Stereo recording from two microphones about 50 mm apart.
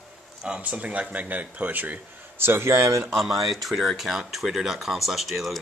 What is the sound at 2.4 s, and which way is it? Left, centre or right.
Speech, right.